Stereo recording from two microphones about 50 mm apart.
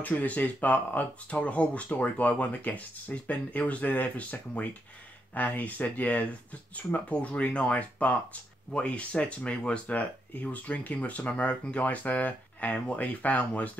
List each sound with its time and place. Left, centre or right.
0.0 s speech: left